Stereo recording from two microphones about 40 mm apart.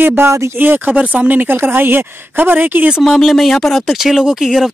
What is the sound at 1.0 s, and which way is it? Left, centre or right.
Speech, right.